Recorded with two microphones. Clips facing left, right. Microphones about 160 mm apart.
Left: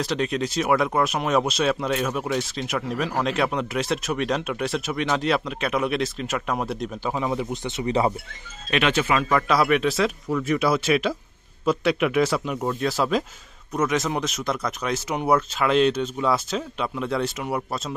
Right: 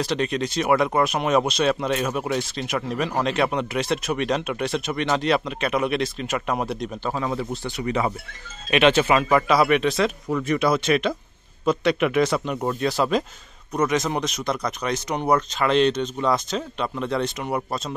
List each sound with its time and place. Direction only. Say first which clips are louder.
0.0 s speech: right 1 dB; centre (ahead or behind)
7.2 s speech: left 2 dB; 15° left (ahead or behind)
8.6 s speech: right 4 dB; 20° right (ahead or behind)
9.3 s speech: even; centre (ahead or behind)